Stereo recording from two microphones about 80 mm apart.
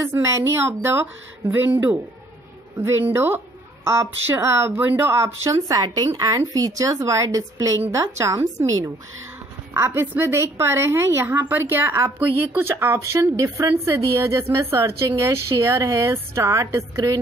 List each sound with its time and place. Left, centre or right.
0.2 s speech: right
1.5 s speech: right
5.7 s a woman's voice: right
9.8 s speech: right